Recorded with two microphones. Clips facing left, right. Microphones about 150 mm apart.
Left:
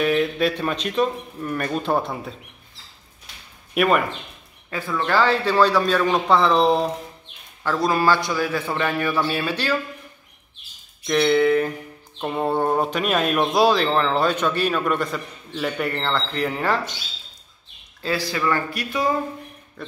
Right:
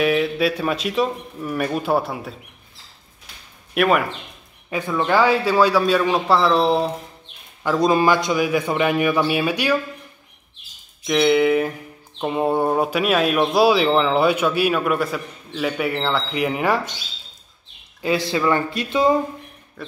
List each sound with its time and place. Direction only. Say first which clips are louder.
0.0 s speech: right 1 dB; 5° right (ahead or behind)
3.7 s speech: right 1 dB; centre (ahead or behind)
4.6 s speech: right 3 dB; 20° right (ahead or behind); by 6.9 s centre (ahead or behind)
7.6 s speech: right 3 dB; 20° right (ahead or behind)
11.1 s speech: right 1 dB; 10° right (ahead or behind)
18.0 s speech: right 4 dB; 20° right (ahead or behind)
19.8 s speech: right 1 dB; 5° right (ahead or behind)